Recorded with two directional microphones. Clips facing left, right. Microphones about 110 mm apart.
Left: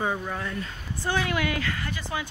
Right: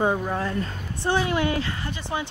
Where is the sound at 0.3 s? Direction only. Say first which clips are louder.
Right 5 dB; 30° right (ahead or behind).